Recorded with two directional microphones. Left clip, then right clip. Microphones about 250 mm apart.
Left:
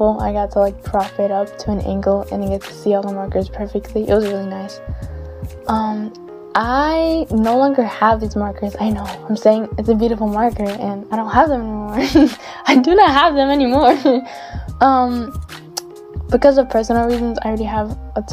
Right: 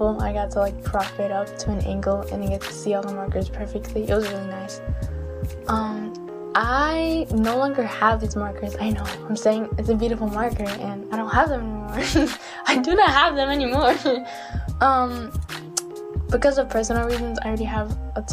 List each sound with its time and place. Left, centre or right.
0.0 s a woman's voice: left
0.9 s speech: left
1.7 s a woman's voice: left
5.7 s music: left
7.5 s a woman's voice: left
16.3 s a woman's voice: left